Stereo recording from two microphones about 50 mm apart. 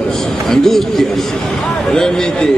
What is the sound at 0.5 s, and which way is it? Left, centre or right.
A man's voice, centre.